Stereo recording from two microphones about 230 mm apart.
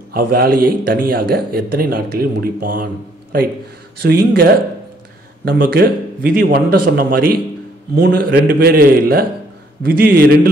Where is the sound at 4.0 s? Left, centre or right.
Right.